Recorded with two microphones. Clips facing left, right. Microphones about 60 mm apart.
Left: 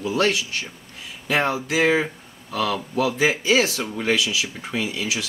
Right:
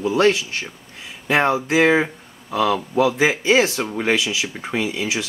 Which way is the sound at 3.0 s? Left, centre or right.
Right.